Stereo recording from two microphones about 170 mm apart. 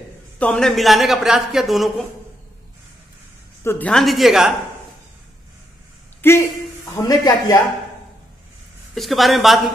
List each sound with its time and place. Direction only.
0.4 s a woman's voice: 5° left (ahead or behind)
3.6 s a woman's voice: 10° left (ahead or behind)
6.2 s speech: 15° left (ahead or behind)
8.9 s a woman's voice: centre (ahead or behind)